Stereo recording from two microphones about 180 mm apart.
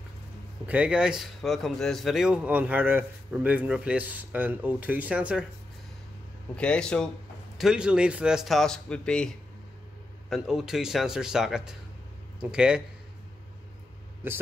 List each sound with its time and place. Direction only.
0.7 s a man's voice: 5° right (ahead or behind)
6.5 s speech: 5° left (ahead or behind)
10.3 s speech: centre (ahead or behind)
14.2 s a man's voice: 10° right (ahead or behind)